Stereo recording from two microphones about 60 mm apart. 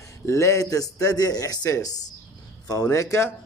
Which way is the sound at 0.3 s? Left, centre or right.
Left.